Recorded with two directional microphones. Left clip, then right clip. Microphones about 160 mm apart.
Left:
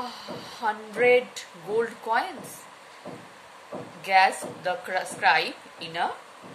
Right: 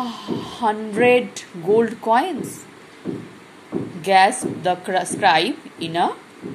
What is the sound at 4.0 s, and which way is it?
Speech, 20° right (ahead or behind).